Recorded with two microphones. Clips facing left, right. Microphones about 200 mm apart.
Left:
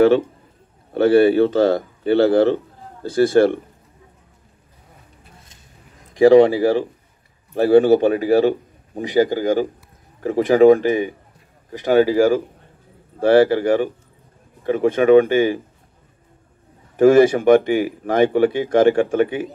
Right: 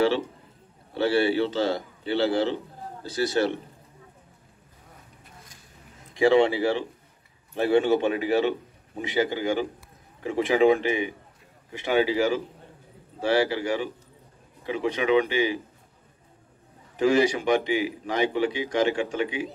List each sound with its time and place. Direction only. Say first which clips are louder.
0.9 s a man's voice: left 9 dB; 50° left (ahead or behind)
6.1 s a man's voice: left 9 dB; 40° left (ahead or behind)
16.9 s a man's voice: left 9 dB; 50° left (ahead or behind)